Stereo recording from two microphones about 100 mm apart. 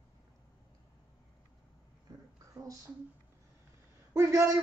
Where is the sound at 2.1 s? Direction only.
35° right (ahead or behind).